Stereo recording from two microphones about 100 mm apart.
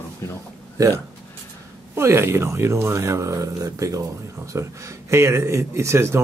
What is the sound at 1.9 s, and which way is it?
Speech, 25° right (ahead or behind).